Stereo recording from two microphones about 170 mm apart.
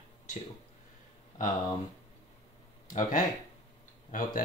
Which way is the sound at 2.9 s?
50° left (ahead or behind).